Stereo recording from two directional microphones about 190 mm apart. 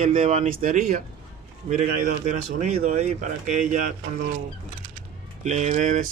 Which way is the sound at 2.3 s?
40° right (ahead or behind).